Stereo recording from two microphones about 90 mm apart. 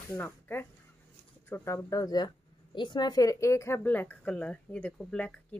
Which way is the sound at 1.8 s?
45° left (ahead or behind).